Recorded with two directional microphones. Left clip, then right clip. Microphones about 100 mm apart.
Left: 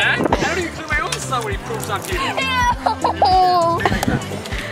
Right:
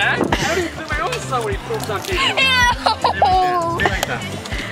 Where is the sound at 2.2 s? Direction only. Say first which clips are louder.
Right 5 dB; 20° right (ahead or behind).